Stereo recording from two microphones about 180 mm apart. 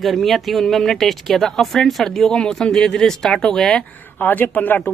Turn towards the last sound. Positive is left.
turn(degrees=10)  # may be behind; listen again after turning